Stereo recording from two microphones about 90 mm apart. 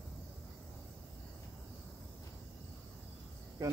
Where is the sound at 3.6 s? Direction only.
40° right (ahead or behind).